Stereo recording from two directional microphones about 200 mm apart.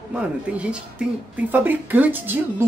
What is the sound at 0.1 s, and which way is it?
Speech, 5° right (ahead or behind).